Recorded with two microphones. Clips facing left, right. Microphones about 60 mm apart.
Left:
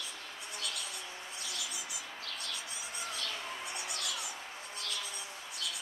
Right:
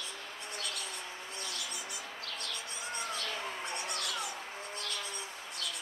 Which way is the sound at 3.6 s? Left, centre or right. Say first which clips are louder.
Right 3 dB; centre.